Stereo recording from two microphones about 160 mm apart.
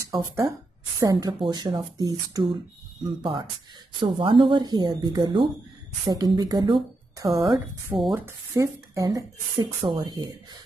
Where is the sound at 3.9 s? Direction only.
30° right (ahead or behind).